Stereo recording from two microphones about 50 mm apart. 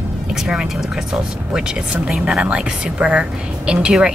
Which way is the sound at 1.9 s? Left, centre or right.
Right.